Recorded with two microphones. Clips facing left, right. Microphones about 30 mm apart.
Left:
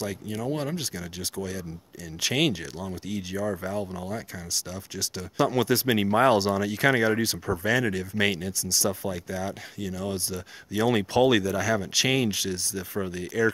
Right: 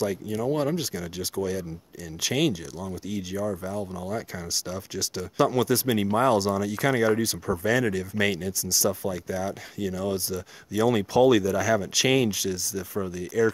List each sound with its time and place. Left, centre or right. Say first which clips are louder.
0.0 s speech: right 4 dB; centre
2.2 s speech: even; centre
3.1 s speech: right 1 dB; centre
3.4 s speech: left 3 dB; left
4.6 s speech: right 3 dB; centre
5.5 s speech: even; centre
9.8 s speech: right 4 dB; centre
10.3 s speech: right 2 dB; centre
12.9 s speech: right 2 dB; left